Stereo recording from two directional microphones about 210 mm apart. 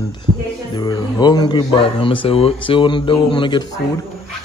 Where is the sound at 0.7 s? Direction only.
20° left (ahead or behind).